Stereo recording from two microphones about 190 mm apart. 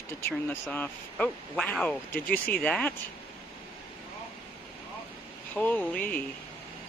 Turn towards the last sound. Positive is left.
turn(degrees=10)  # may be behind; listen again after turning